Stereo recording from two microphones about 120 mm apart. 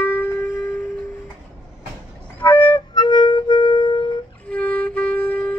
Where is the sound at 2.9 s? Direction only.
40° left (ahead or behind).